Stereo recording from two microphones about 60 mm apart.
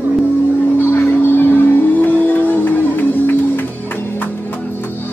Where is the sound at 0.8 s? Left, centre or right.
Left.